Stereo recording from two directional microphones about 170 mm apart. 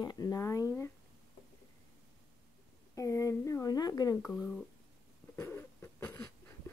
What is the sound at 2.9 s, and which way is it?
Speech, 20° left (ahead or behind).